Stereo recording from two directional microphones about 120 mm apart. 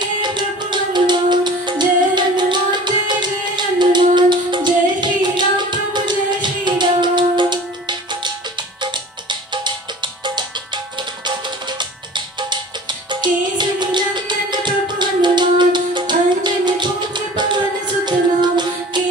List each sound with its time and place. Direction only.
0.0 s music: 40° right (ahead or behind)
8.8 s music: 40° right (ahead or behind)
13.1 s music: 40° right (ahead or behind)